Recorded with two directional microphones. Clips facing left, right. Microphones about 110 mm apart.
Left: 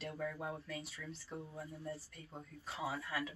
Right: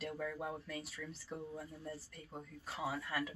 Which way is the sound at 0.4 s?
Centre (ahead or behind).